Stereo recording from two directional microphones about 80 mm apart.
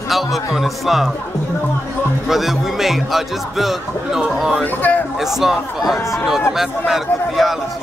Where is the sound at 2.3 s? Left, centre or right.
Centre.